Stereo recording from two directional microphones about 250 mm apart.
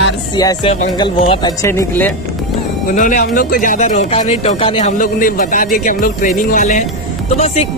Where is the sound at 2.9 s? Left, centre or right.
Left.